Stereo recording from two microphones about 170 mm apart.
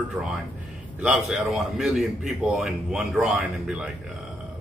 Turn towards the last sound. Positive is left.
turn(degrees=-5)  # may be behind; listen again after turning